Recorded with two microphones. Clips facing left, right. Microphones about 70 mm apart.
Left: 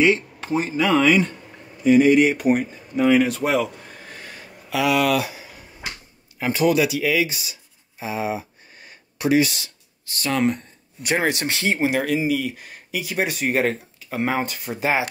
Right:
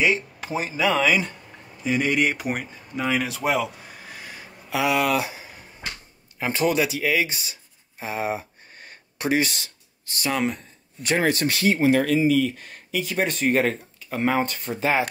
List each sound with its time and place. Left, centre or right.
0.0 s speech: centre
4.6 s speech: right
5.6 s a sound: centre
6.4 s speech: right
8.0 s a sound: right
10.3 s speech: centre
11.0 s speech: centre
11.9 s speech: centre
14.8 s speech: centre